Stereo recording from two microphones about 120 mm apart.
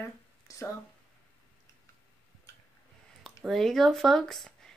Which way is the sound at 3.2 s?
Centre (ahead or behind).